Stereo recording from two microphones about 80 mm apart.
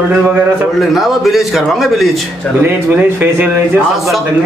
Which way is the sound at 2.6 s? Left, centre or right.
Right.